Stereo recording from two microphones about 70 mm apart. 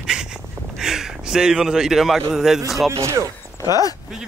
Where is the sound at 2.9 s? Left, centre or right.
Right.